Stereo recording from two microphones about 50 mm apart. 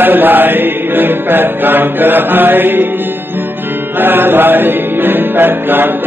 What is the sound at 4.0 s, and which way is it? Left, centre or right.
Music, right.